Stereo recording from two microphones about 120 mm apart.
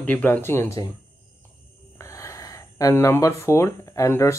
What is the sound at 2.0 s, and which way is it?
Speech, 25° left (ahead or behind).